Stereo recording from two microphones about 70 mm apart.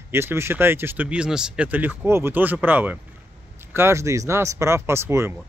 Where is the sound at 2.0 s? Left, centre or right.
Right.